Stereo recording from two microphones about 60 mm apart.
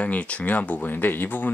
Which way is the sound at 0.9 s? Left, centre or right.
Left.